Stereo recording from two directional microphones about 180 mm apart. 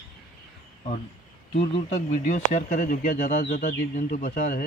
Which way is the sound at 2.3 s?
45° left (ahead or behind).